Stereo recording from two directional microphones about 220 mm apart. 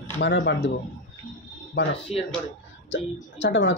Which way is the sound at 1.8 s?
50° left (ahead or behind).